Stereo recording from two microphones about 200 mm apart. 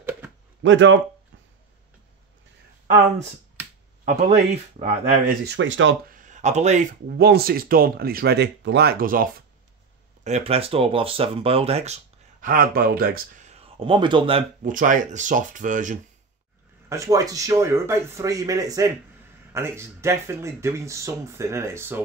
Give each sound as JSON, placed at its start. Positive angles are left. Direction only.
{"t": 0.6, "sound": "speech", "side_deg": -70}
{"t": 4.7, "sound": "speech", "side_deg": -35}
{"t": 5.4, "sound": "speech", "side_deg": -60}
{"t": 6.0, "sound": "speech", "side_deg": -40}
{"t": 10.2, "sound": "speech", "side_deg": -30}
{"t": 14.6, "sound": "speech", "side_deg": -40}
{"t": 16.9, "sound": "speech", "side_deg": -15}